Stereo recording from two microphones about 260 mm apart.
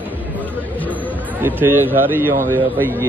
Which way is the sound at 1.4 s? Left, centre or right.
Centre.